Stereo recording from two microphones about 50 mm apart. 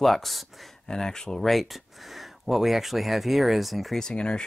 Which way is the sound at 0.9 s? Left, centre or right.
Centre.